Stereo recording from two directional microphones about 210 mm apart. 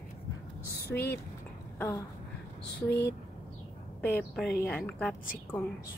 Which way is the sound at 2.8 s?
50° left (ahead or behind).